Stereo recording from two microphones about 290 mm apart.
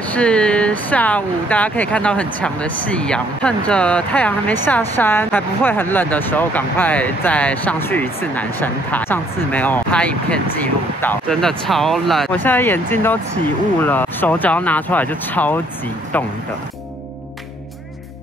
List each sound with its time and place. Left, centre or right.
0.1 s speech: centre